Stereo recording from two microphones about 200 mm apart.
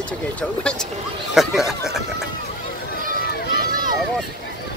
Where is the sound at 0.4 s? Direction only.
5° left (ahead or behind).